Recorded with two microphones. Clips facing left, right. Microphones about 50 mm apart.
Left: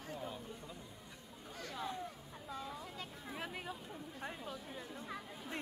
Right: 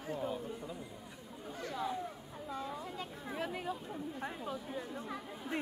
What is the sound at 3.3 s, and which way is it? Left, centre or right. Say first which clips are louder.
Speech: right 6 dB; centre.